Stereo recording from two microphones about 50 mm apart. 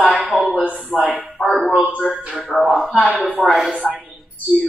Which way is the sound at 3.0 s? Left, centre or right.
Left.